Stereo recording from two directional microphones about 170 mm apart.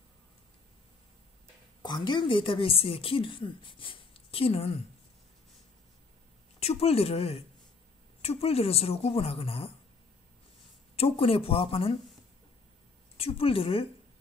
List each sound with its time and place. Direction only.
1.8 s speech: 25° left (ahead or behind)
6.6 s speech: 40° left (ahead or behind)
11.0 s speech: 35° left (ahead or behind)
13.2 s speech: 35° left (ahead or behind)